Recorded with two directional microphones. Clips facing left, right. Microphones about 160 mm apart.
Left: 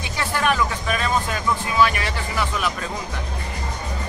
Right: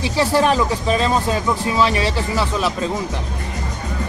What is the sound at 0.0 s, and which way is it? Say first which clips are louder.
Speech: right 7 dB; 30° right (ahead or behind).